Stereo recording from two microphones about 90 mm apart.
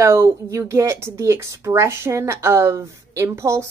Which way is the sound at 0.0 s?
30° right (ahead or behind).